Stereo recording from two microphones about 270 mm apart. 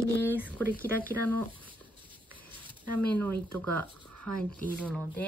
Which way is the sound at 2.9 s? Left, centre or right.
Centre.